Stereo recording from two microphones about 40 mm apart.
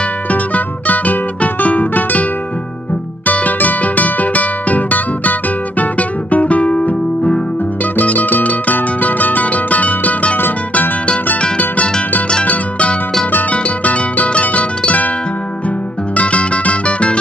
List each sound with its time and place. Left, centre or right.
0.3 s music: left
3.3 s music: left
7.8 s music: left
12.4 s music: left
16.2 s music: left